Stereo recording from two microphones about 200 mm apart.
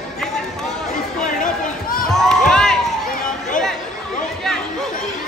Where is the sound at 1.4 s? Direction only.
45° left (ahead or behind).